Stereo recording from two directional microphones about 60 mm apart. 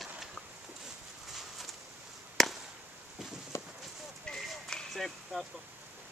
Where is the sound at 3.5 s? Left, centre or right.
Left.